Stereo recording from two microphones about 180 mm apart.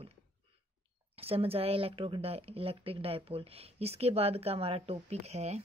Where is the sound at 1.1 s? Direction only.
35° right (ahead or behind).